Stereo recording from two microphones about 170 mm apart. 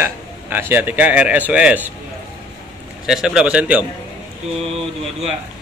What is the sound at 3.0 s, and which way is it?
Speech, 5° right (ahead or behind).